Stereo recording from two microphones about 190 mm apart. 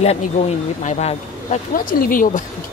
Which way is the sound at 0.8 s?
35° left (ahead or behind).